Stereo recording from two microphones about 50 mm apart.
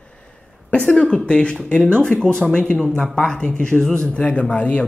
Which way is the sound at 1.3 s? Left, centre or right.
Centre.